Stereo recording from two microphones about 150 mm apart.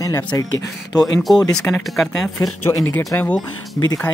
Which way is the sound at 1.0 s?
Centre (ahead or behind).